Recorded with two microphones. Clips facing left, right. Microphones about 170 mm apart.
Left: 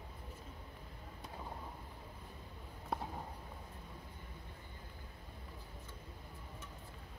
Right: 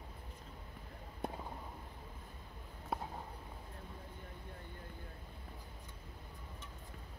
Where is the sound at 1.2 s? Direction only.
55° right (ahead or behind).